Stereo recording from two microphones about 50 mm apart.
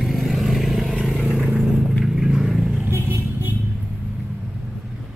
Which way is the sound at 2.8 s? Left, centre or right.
Right.